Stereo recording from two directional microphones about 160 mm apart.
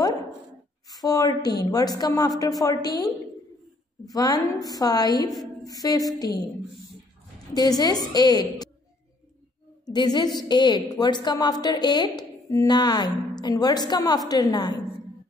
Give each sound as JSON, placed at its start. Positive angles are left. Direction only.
{"t": 0.8, "sound": "a woman's voice", "side_deg": 25}
{"t": 7.5, "sound": "a woman's voice", "side_deg": 25}
{"t": 9.8, "sound": "a woman's voice", "side_deg": 25}